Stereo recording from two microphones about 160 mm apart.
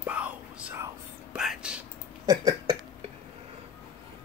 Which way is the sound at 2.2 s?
25° right (ahead or behind).